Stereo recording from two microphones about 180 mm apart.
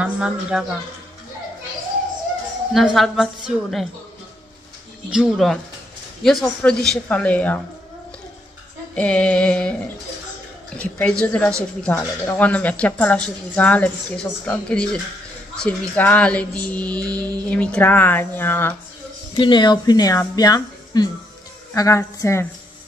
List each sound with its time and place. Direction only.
0.0 s a woman's voice: 5° right (ahead or behind)
2.7 s speech: centre (ahead or behind)
5.1 s speech: centre (ahead or behind)
8.9 s speech: 5° left (ahead or behind)
10.8 s speech: 5° left (ahead or behind)
19.3 s speech: 25° left (ahead or behind)